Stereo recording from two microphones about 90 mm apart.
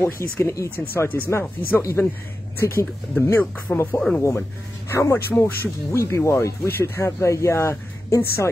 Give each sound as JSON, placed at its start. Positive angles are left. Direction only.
{"t": 0.0, "sound": "speech", "side_deg": 30}
{"t": 1.8, "sound": "speech", "side_deg": 35}
{"t": 2.6, "sound": "speech", "side_deg": 25}